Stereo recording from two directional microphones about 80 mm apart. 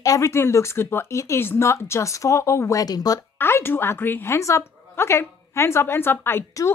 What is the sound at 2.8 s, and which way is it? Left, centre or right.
Speech, left.